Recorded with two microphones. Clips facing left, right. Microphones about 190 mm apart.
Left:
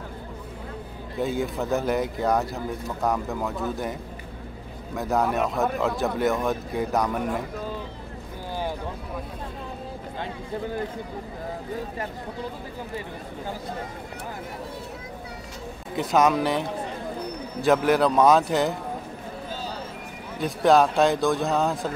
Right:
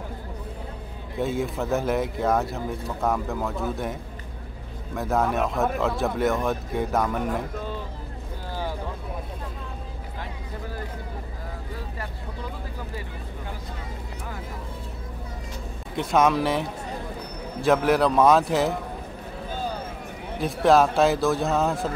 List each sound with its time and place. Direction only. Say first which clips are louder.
1.1 s speech: even; centre (ahead or behind)
4.9 s speech: even; centre (ahead or behind)
16.0 s speech: even; centre (ahead or behind)
19.5 s a sound: right 5 dB; 55° right (ahead or behind)
20.3 s speech: even; centre (ahead or behind)